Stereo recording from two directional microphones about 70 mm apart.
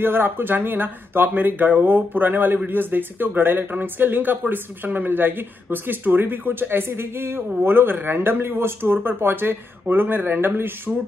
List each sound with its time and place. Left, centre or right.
0.0 s speech: right